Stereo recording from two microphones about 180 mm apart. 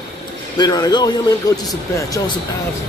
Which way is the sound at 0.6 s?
20° left (ahead or behind).